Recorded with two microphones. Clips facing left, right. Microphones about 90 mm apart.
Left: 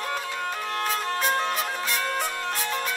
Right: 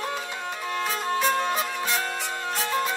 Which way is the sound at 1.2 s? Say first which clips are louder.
Right 1 dB; 20° right (ahead or behind).